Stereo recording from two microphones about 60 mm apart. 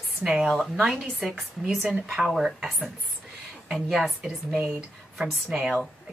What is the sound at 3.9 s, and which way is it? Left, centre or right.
Speech, centre.